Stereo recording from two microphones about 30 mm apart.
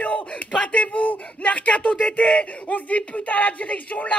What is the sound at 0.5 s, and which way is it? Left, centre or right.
Speech, left.